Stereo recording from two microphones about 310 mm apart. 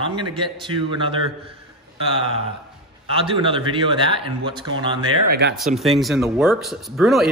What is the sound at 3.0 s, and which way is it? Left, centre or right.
A man's voice, centre.